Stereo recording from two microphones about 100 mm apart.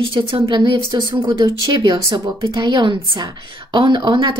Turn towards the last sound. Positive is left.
turn(degrees=-50)  # may be behind; listen again after turning